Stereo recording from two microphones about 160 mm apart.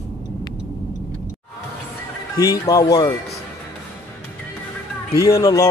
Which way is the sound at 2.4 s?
20° left (ahead or behind).